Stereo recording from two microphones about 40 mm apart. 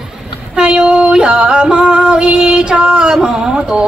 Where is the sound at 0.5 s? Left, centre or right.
Right.